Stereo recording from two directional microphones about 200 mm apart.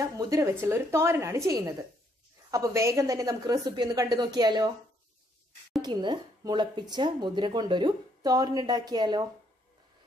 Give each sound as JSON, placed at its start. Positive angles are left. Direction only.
{"t": 0.0, "sound": "a woman's voice", "side_deg": -15}
{"t": 5.8, "sound": "speech", "side_deg": -20}